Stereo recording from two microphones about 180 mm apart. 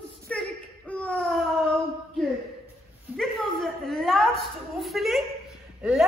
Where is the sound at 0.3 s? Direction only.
10° left (ahead or behind).